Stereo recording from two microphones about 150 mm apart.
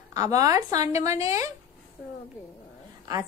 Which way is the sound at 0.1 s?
25° right (ahead or behind).